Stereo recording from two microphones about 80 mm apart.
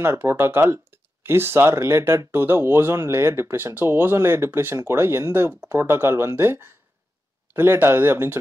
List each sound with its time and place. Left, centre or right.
0.0 s speech: right